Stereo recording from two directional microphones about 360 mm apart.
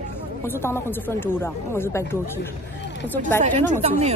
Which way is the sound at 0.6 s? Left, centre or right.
Centre.